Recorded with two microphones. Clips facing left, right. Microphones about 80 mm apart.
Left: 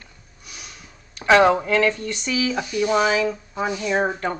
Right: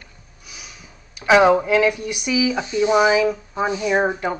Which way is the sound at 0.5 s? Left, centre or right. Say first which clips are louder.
Even; centre.